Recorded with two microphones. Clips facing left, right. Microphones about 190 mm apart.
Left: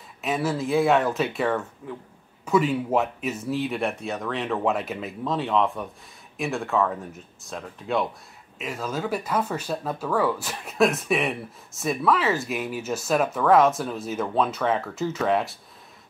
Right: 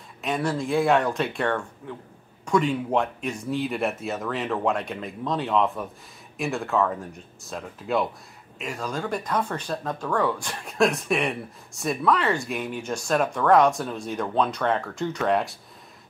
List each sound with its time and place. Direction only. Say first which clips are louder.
0.2 s speech: left 1 dB; 5° left (ahead or behind)